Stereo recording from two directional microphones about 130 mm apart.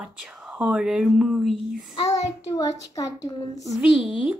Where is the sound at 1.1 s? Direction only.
Centre (ahead or behind).